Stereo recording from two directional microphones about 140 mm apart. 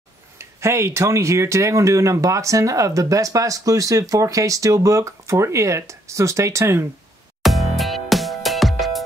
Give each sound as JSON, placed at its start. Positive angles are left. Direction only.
{"t": 0.4, "sound": "speech", "side_deg": -20}
{"t": 7.4, "sound": "music", "side_deg": 0}